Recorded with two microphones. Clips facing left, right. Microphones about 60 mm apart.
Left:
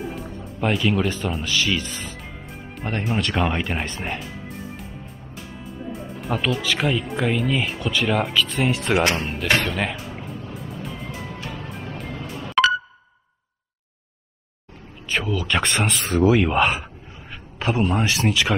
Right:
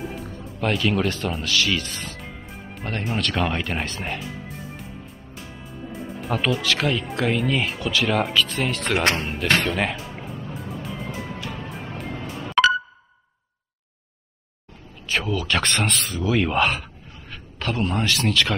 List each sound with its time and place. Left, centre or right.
0.0 s music: centre
0.6 s speech: centre
2.1 s music: centre
3.2 s speech: centre
4.2 s music: centre
5.6 s speech: centre
8.7 s speech: centre
9.2 s speech: centre
9.6 s music: centre
15.0 s speech: centre
17.3 s a sound: centre
18.0 s speech: centre